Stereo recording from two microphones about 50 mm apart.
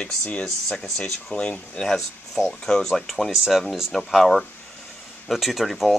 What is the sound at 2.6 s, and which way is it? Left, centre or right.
Speech, centre.